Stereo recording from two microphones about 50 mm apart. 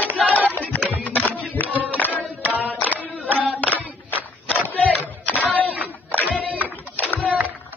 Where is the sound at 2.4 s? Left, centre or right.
Right.